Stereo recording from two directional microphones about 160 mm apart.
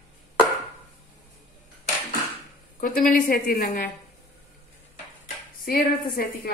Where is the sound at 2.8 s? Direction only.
60° left (ahead or behind).